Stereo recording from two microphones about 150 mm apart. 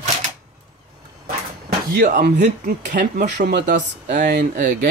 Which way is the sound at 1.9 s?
75° right (ahead or behind).